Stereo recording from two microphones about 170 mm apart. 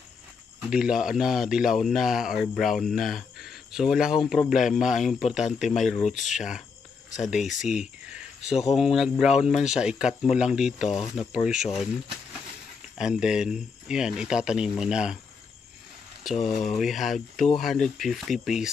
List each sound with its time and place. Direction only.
0.6 s speech: 5° right (ahead or behind)
6.0 s speech: 45° left (ahead or behind)
6.3 s speech: 5° right (ahead or behind)
7.6 s speech: 5° right (ahead or behind)
12.9 s speech: 5° right (ahead or behind)
16.3 s speech: centre (ahead or behind)